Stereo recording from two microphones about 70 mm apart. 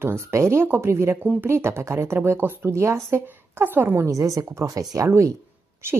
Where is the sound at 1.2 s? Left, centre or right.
Right.